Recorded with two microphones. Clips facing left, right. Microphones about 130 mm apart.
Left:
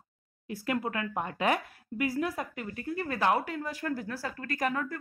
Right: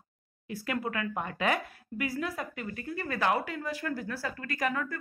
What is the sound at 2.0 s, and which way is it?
Speech, 50° left (ahead or behind).